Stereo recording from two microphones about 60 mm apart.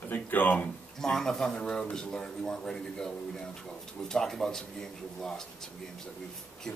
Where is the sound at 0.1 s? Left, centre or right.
Left.